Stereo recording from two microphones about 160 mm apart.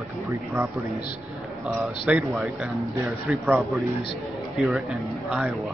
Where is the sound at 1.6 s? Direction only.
5° right (ahead or behind).